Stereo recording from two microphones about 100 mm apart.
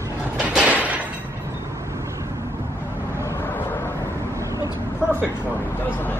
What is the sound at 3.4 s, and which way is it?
Vehicle, 20° left (ahead or behind).